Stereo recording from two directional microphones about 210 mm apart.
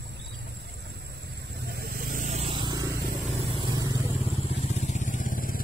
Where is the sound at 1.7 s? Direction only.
45° right (ahead or behind).